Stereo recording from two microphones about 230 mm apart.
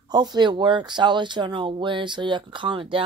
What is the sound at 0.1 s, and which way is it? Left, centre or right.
Speech, centre.